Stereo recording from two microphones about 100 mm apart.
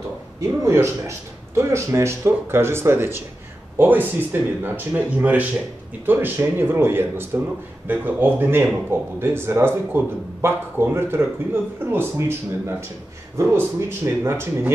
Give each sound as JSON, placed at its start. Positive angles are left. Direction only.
{"t": 0.4, "sound": "speech", "side_deg": -30}